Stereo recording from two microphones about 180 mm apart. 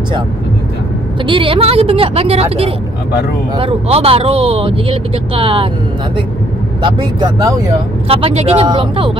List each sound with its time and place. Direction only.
1.2 s speech: 30° right (ahead or behind)
6.8 s speech: 25° right (ahead or behind)
8.1 s speech: 35° right (ahead or behind)